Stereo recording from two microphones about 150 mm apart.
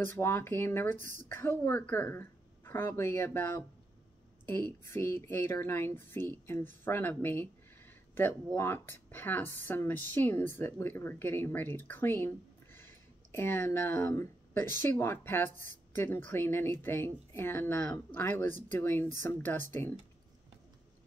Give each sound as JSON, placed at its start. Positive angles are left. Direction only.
{"t": 0.0, "sound": "speech", "side_deg": 15}
{"t": 4.8, "sound": "speech", "side_deg": 15}